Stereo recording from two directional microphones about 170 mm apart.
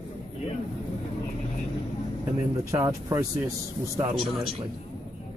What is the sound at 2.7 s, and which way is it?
Speech, 15° right (ahead or behind).